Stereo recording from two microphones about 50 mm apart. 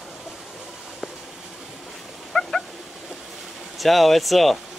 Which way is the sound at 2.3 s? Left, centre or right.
Centre.